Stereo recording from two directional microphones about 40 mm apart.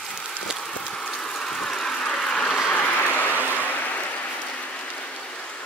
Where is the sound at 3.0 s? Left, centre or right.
Left.